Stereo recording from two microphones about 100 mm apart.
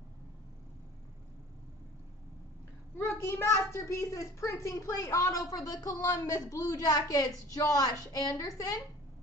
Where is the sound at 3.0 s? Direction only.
25° left (ahead or behind).